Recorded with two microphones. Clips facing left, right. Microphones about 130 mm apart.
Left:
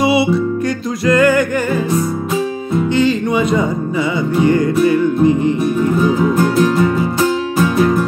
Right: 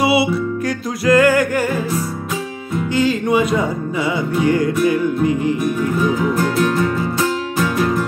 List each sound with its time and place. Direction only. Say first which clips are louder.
0.0 s music: left 2 dB; 10° right (ahead or behind)
3.0 s music: right 1 dB; 5° right (ahead or behind)
4.8 s music: left 4 dB; 10° right (ahead or behind)
5.6 s music: left 4 dB; 30° left (ahead or behind)